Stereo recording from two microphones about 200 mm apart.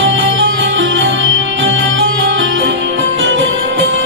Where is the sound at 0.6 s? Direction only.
70° right (ahead or behind).